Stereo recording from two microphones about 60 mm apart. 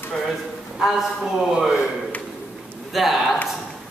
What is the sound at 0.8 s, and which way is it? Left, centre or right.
Speech, centre.